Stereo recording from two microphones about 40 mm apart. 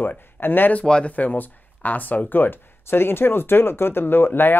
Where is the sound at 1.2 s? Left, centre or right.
Left.